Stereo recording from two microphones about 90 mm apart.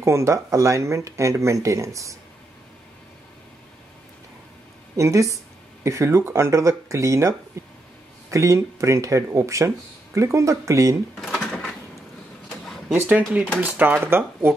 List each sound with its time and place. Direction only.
0.0 s speech: 35° right (ahead or behind)
4.9 s speech: 35° right (ahead or behind)
11.1 s a sound: 10° left (ahead or behind)
13.4 s speech: 15° right (ahead or behind)